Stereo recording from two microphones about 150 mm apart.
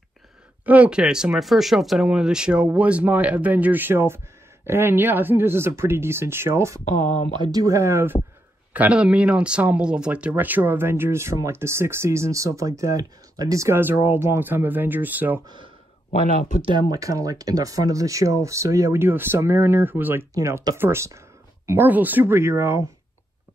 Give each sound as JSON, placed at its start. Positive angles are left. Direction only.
{"t": 0.7, "sound": "speech", "side_deg": -10}
{"t": 7.0, "sound": "speech", "side_deg": 55}
{"t": 7.3, "sound": "speech", "side_deg": -30}
{"t": 15.4, "sound": "speech", "side_deg": -30}